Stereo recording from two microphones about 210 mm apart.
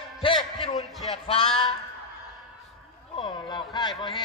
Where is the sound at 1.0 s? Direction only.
25° left (ahead or behind).